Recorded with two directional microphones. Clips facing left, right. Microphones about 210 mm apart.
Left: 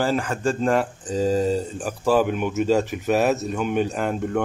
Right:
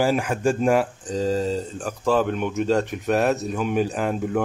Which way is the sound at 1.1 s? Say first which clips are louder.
Left 2 dB; 10° left (ahead or behind).